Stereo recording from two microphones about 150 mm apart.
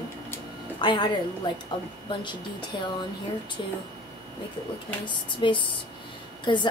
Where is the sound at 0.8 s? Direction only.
30° left (ahead or behind).